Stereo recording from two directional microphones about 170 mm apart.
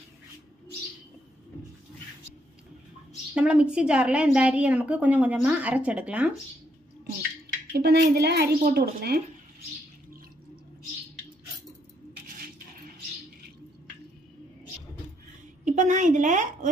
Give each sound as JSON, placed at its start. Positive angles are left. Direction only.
{"t": 3.3, "sound": "a woman's voice", "side_deg": -5}
{"t": 7.7, "sound": "a woman's voice", "side_deg": -75}
{"t": 15.6, "sound": "a sound", "side_deg": -45}